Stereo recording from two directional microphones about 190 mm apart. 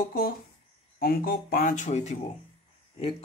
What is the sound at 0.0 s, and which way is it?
Speech, 50° left (ahead or behind).